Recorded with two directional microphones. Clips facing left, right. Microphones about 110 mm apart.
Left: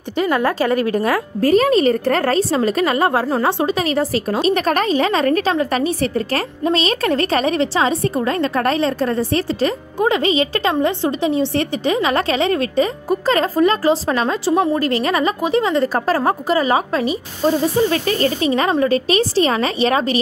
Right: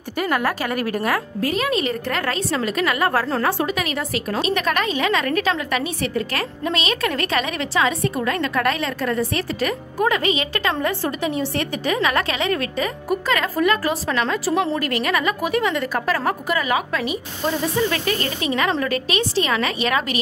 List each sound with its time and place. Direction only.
0.2 s a woman's voice: 25° left (ahead or behind)
1.4 s a woman's voice: 40° left (ahead or behind)
3.1 s a woman's voice: 20° left (ahead or behind)
10.7 s a woman's voice: 20° left (ahead or behind)